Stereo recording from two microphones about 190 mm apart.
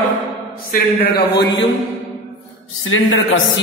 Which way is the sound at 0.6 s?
55° left (ahead or behind).